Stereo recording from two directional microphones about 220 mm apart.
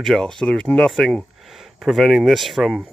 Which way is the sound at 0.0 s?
Centre (ahead or behind).